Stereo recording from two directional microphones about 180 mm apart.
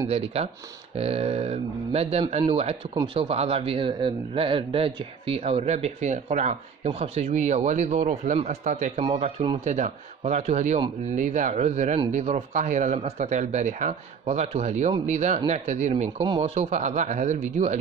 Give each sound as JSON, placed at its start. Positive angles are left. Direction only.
{"t": 0.1, "sound": "speech", "side_deg": -35}
{"t": 9.0, "sound": "speech", "side_deg": -25}
{"t": 9.7, "sound": "speech", "side_deg": -40}